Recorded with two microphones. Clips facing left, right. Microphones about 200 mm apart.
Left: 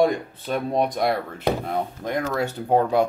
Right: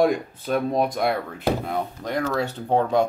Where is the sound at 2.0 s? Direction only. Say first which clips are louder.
Right 1 dB; 15° left (ahead or behind).